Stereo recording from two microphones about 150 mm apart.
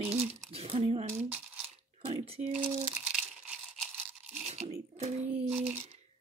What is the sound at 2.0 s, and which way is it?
Speech, 40° right (ahead or behind).